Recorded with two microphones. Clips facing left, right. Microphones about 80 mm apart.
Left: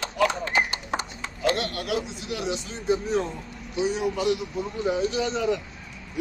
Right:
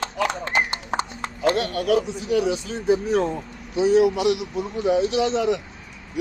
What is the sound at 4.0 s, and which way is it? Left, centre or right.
A man's voice, right.